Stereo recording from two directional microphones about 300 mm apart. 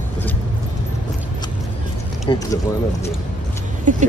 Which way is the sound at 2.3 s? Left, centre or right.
Centre.